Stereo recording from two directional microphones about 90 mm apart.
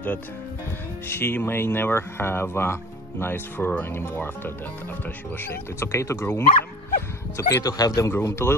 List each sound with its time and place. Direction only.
1.0 s speech: 25° left (ahead or behind)
5.4 s speech: 25° left (ahead or behind)
7.3 s speech: 40° left (ahead or behind)
8.1 s speech: 30° left (ahead or behind)